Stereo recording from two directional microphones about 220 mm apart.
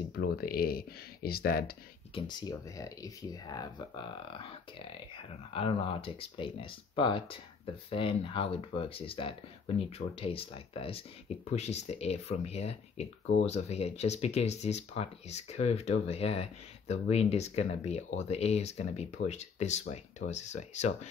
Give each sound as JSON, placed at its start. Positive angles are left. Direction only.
{"t": 0.1, "sound": "speech", "side_deg": 45}
{"t": 2.1, "sound": "speech", "side_deg": 20}